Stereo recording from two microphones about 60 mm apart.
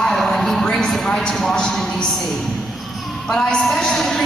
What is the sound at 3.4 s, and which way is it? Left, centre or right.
Speech, centre.